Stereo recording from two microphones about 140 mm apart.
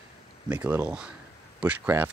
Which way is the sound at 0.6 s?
10° right (ahead or behind).